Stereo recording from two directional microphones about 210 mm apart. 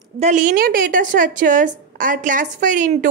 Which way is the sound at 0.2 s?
35° right (ahead or behind).